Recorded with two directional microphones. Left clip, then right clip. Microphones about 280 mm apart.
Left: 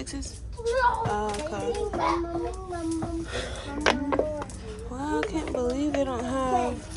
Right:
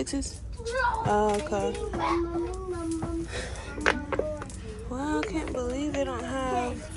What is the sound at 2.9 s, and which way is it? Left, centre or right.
Speech, left.